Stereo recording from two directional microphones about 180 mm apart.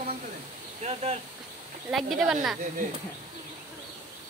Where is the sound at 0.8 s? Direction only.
40° right (ahead or behind).